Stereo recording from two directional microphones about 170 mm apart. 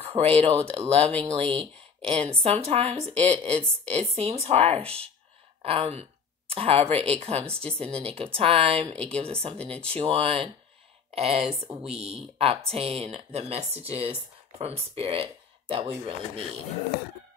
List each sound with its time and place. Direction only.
0.0 s speech: 35° right (ahead or behind)